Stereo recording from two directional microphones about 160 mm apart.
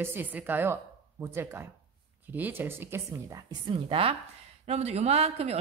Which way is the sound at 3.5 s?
35° right (ahead or behind).